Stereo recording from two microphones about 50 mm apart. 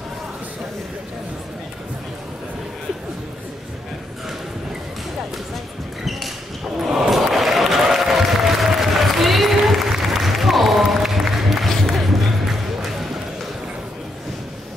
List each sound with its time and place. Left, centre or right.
6.0 s basketball bounce: centre
6.8 s applause: centre